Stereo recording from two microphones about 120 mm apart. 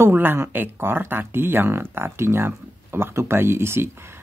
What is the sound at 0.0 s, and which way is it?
Speech, 20° right (ahead or behind).